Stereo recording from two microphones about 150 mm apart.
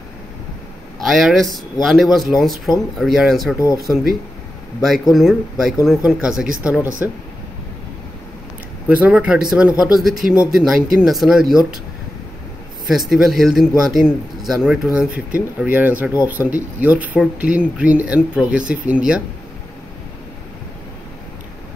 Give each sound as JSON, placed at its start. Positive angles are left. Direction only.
{"t": 1.0, "sound": "a man's voice", "side_deg": 0}
{"t": 3.5, "sound": "speech", "side_deg": 20}
{"t": 5.1, "sound": "a man's voice", "side_deg": 0}
{"t": 8.8, "sound": "a man's voice", "side_deg": -10}
{"t": 13.1, "sound": "a man's voice", "side_deg": 0}